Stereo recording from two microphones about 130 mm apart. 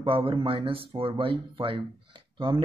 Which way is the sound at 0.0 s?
45° right (ahead or behind).